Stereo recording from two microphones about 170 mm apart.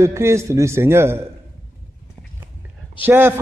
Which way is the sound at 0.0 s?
15° right (ahead or behind).